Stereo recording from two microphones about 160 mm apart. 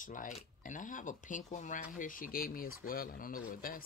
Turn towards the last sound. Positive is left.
turn(degrees=60)  # may be behind; listen again after turning